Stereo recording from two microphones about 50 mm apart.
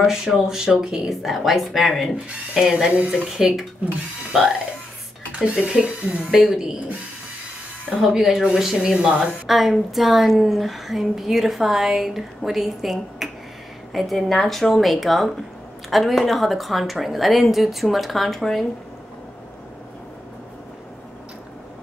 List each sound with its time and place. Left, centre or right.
0.0 s a woman's voice: centre
5.3 s a sound: right
5.6 s speech: centre
7.9 s speech: centre
9.5 s a woman's voice: centre